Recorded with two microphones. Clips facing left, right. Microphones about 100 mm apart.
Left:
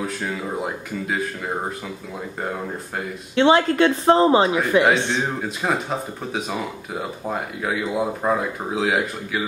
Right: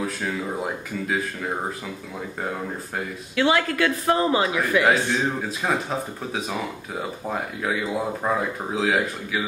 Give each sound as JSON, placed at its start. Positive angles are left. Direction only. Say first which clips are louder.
{"t": 0.0, "sound": "speech", "louder": "even", "side_deg": 0}
{"t": 3.3, "sound": "a woman's voice", "louder": "left 5 dB", "side_deg": 25}
{"t": 5.4, "sound": "speech", "louder": "left 1 dB", "side_deg": 0}